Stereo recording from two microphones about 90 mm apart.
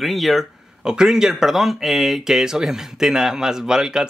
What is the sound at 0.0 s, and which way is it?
Speech, centre (ahead or behind).